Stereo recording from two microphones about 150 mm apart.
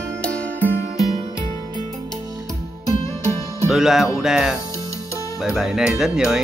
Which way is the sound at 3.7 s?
Centre (ahead or behind).